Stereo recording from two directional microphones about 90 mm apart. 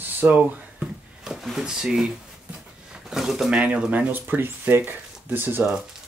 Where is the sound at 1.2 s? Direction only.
Centre (ahead or behind).